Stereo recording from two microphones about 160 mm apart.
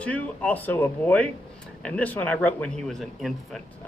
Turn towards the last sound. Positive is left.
turn(degrees=0)  # may be behind; listen again after turning